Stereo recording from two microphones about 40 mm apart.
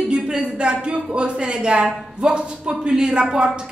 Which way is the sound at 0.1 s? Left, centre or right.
Right.